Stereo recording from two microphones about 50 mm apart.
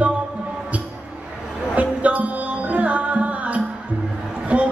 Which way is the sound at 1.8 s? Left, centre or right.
Right.